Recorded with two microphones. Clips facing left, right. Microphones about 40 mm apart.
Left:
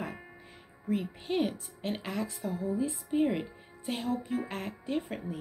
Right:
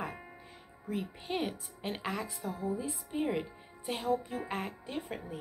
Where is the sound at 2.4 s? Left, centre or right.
Centre.